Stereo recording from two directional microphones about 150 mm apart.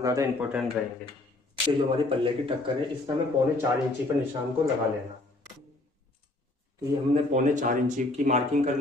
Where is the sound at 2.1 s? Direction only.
35° right (ahead or behind).